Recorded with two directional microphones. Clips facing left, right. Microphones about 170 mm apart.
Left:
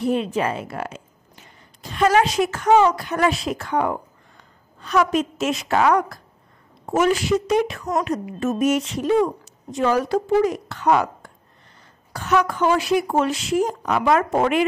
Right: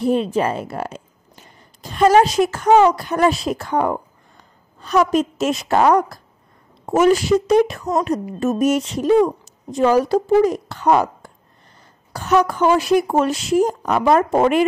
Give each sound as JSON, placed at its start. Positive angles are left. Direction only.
{"t": 0.0, "sound": "a woman's voice", "side_deg": -35}